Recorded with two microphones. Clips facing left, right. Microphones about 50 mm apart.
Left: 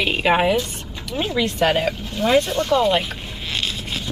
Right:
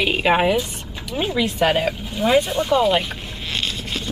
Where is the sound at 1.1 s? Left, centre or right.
Centre.